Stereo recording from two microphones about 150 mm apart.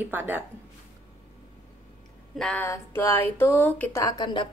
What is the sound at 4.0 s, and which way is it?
Speech, 25° left (ahead or behind).